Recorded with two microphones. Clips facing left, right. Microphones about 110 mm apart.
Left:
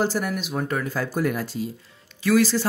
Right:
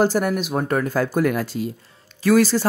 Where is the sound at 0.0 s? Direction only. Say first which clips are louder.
Right 5 dB; 50° right (ahead or behind).